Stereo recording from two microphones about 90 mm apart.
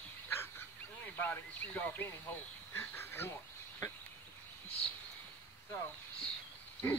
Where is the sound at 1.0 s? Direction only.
20° left (ahead or behind).